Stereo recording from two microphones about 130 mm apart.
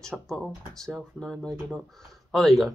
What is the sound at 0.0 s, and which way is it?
Speech, 5° left (ahead or behind).